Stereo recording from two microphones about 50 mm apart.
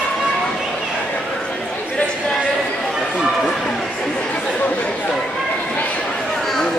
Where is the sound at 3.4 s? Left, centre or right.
Centre.